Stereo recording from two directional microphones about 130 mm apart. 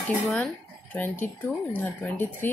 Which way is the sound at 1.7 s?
10° left (ahead or behind).